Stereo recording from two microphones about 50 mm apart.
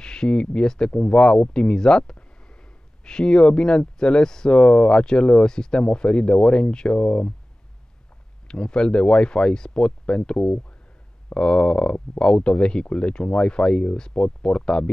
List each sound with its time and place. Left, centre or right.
0.0 s speech: centre
8.5 s speech: centre